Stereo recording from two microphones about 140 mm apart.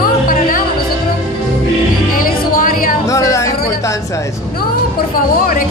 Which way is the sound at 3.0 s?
20° left (ahead or behind).